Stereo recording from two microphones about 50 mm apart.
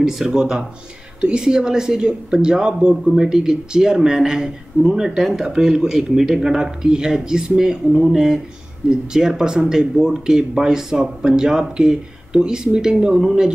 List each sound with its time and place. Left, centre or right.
0.0 s speech: centre